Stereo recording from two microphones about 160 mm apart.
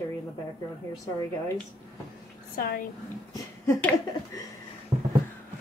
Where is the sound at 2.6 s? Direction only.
70° left (ahead or behind).